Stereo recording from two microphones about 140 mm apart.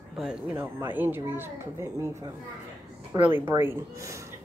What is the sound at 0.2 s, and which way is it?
Speech, 10° right (ahead or behind).